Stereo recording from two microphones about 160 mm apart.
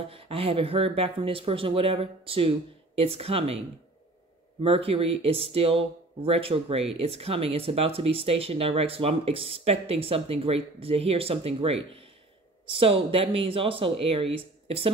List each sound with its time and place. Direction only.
0.0 s speech: 35° right (ahead or behind)